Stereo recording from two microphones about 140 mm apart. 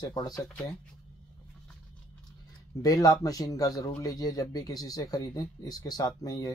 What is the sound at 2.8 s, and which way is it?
Speech, 25° left (ahead or behind).